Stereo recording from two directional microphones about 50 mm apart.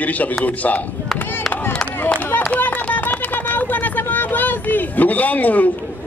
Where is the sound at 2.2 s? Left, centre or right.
Left.